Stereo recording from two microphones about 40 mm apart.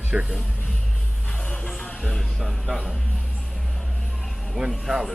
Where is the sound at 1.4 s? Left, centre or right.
Left.